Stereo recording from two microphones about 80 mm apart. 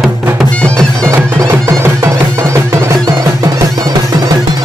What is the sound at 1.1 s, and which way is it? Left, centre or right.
Music, right.